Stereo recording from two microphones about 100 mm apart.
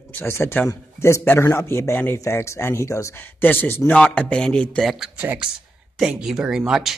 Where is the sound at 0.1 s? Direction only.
25° left (ahead or behind); by 5.1 s centre (ahead or behind).